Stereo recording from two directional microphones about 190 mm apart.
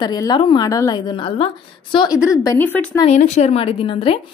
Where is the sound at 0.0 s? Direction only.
20° left (ahead or behind).